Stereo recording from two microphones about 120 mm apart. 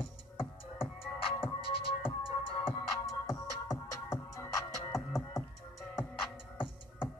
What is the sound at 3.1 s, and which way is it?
Music, 30° left (ahead or behind).